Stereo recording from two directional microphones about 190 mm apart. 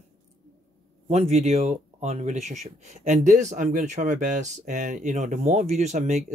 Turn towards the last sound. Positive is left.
turn(degrees=-35)  # may be behind; listen again after turning